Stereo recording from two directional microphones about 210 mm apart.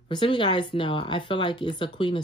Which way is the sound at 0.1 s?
20° left (ahead or behind).